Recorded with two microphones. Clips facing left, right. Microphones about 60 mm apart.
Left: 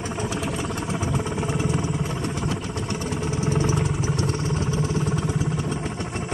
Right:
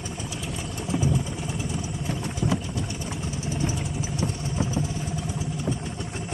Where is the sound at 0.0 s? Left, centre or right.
Left.